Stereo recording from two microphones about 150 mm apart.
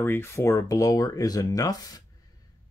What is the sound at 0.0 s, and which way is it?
Speech, 15° left (ahead or behind).